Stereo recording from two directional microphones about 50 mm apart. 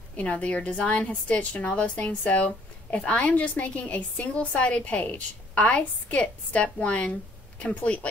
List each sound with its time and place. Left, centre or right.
0.2 s a woman's voice: left